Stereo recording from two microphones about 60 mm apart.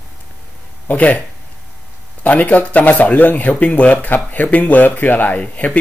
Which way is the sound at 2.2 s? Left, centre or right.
Left.